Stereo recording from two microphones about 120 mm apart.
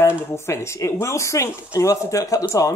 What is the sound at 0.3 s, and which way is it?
Speech, 20° left (ahead or behind).